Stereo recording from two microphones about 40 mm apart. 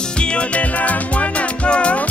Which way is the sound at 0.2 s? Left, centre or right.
Left.